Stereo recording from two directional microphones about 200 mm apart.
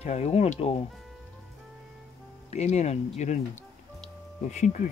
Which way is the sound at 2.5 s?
35° left (ahead or behind).